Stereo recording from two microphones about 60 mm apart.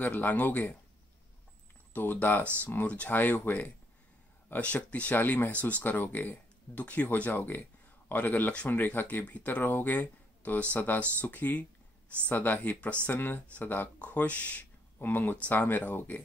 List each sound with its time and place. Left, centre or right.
0.0 s speech: left
2.0 s speech: left
15.0 s speech: left